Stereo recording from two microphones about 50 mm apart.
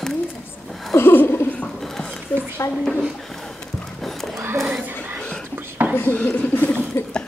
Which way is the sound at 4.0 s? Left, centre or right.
Centre.